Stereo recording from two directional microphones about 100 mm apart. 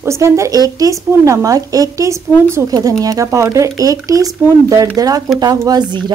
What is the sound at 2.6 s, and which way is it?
A woman's voice, 40° right (ahead or behind).